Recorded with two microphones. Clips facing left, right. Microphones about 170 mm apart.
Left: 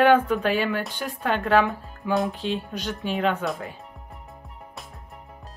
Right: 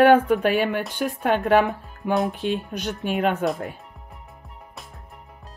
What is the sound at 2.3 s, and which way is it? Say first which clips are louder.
Speech: right 2 dB; 50° right (ahead or behind).